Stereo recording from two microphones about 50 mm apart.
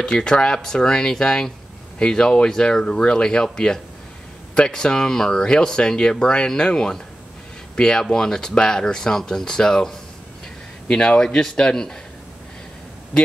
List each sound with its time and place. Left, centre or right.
0.0 s speech: centre